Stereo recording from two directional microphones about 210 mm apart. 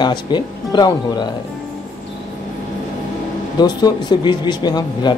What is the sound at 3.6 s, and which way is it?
Speech, 20° left (ahead or behind).